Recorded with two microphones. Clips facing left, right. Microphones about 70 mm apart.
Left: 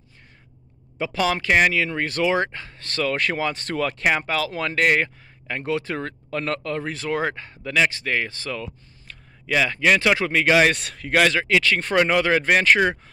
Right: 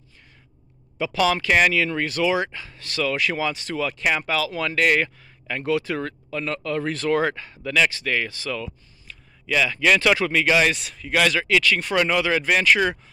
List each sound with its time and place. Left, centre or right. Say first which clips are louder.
0.9 s speech: right 2 dB; left
4.0 s speech: even; left
6.3 s a man's voice: left 2 dB; left
6.8 s speech: right 3 dB; centre
9.1 s a sound: even; left
9.6 s speech: even; left
10.4 s a man's voice: left 2 dB; left
11.1 s speech: left 1 dB; left